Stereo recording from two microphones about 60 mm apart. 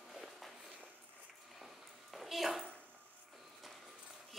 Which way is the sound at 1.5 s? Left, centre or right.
Centre.